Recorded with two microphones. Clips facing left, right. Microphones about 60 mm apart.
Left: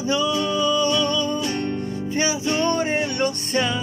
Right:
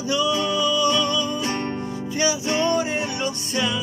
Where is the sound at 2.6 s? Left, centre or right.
Left.